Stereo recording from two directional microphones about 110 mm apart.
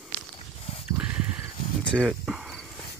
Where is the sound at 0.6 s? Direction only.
65° left (ahead or behind).